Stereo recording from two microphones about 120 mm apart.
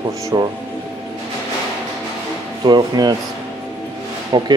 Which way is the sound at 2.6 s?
35° right (ahead or behind).